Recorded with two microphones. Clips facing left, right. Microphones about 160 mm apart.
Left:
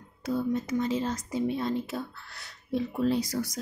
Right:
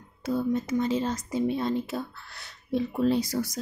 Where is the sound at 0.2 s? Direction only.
25° right (ahead or behind).